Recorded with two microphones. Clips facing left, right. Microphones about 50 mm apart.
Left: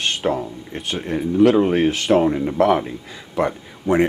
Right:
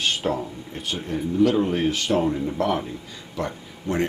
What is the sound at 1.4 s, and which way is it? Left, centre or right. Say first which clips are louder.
Speech: left 6 dB; left.